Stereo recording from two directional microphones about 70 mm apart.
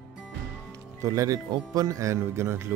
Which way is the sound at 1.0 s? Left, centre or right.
Right.